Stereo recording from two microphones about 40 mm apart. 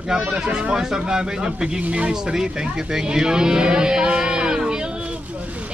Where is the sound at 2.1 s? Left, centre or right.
Centre.